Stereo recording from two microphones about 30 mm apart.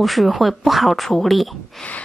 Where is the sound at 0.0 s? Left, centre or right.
Centre.